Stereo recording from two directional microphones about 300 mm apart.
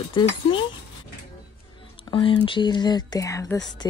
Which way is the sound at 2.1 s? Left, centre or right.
Centre.